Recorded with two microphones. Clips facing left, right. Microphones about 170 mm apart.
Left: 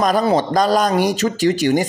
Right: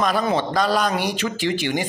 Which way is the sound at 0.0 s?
40° left (ahead or behind).